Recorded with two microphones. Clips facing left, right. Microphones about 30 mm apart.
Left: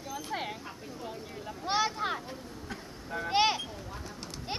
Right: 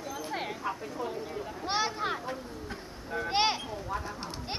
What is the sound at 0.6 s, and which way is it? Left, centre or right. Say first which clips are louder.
A child's voice: right 8 dB; right.